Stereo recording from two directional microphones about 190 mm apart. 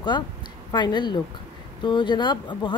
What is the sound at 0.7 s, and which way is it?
Speech, 20° left (ahead or behind).